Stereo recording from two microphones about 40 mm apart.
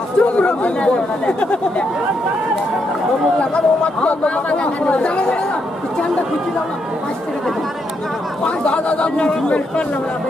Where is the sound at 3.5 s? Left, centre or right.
Left.